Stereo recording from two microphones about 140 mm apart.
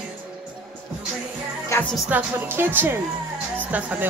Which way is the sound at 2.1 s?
15° right (ahead or behind).